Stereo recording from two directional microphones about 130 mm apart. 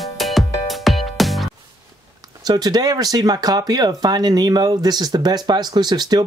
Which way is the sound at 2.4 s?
30° right (ahead or behind).